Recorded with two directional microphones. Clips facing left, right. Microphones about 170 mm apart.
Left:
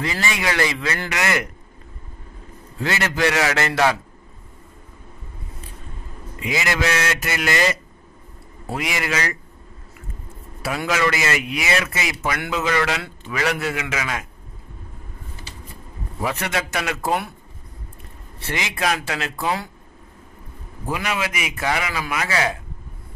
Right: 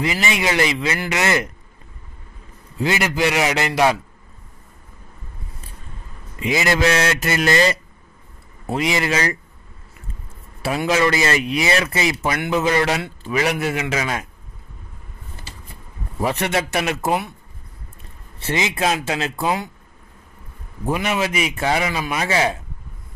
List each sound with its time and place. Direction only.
0.0 s a man's voice: 20° right (ahead or behind)
2.8 s a man's voice: 15° right (ahead or behind)
6.4 s a man's voice: 30° right (ahead or behind)
10.6 s a man's voice: 25° right (ahead or behind)
13.7 s a man's voice: 30° right (ahead or behind)
16.2 s a man's voice: 30° right (ahead or behind)
18.4 s a man's voice: 25° right (ahead or behind)
20.8 s a man's voice: 25° right (ahead or behind)